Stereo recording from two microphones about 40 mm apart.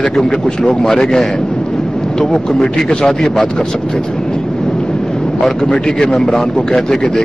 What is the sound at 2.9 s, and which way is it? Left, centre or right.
Speech, centre.